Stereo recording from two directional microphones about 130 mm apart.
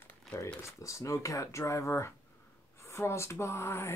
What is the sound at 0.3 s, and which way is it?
Crumpling, centre (ahead or behind).